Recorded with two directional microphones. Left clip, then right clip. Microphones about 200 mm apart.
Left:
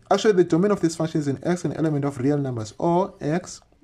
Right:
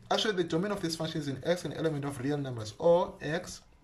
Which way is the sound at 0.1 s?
35° left (ahead or behind).